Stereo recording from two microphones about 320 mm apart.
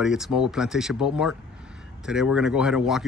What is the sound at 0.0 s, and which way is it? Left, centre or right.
Speech, centre.